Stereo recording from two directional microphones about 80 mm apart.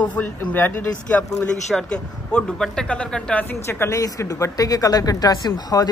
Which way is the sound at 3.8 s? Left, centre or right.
Left.